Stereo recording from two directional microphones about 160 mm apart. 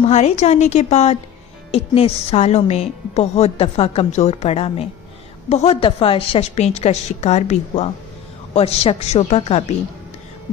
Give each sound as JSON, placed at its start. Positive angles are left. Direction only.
{"t": 0.0, "sound": "a woman's voice", "side_deg": 45}